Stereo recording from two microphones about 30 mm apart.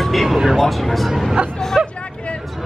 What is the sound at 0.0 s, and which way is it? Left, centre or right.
Vehicle, centre.